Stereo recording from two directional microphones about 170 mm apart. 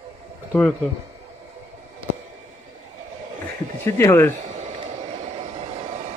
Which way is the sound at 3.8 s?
15° left (ahead or behind).